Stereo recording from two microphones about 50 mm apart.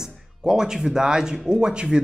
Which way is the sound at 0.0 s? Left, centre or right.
Centre.